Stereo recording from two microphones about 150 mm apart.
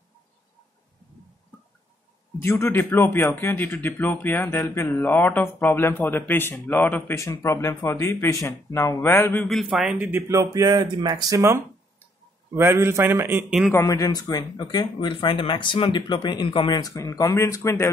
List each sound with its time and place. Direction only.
2.3 s a man's voice: 15° left (ahead or behind); by 13.6 s 15° right (ahead or behind)
13.7 s speech: 20° left (ahead or behind)